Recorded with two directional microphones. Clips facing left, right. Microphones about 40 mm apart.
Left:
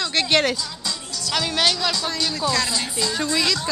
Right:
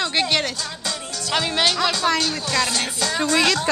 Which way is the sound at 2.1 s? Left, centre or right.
Right.